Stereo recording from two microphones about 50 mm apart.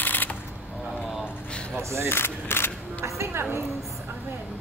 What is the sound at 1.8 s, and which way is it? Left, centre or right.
Speech, right.